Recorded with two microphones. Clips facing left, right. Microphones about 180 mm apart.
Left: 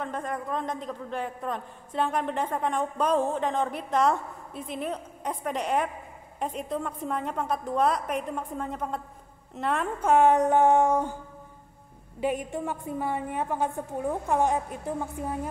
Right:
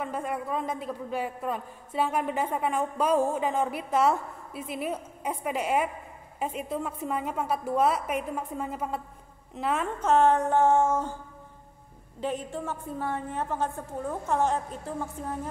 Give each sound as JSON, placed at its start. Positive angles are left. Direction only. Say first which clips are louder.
{"t": 0.0, "sound": "a man's voice", "louder": "right 1 dB", "side_deg": -10}
{"t": 9.9, "sound": "a woman's voice", "louder": "left 2 dB", "side_deg": 10}
{"t": 12.2, "sound": "a woman's voice", "louder": "left 3 dB", "side_deg": 15}